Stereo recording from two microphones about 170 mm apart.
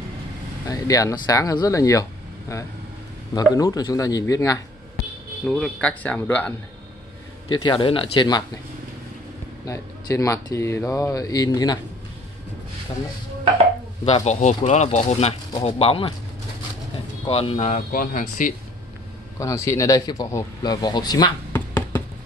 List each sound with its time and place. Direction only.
0.7 s a man's voice: 20° left (ahead or behind)
5.4 s speech: 5° left (ahead or behind)
7.5 s a man's voice: 25° left (ahead or behind)
9.7 s speech: 20° left (ahead or behind)
14.0 s speech: 40° left (ahead or behind)
17.3 s speech: 35° left (ahead or behind); by 18.5 s 55° left (ahead or behind)
19.3 s a man's voice: 15° left (ahead or behind)
21.5 s music: 10° left (ahead or behind)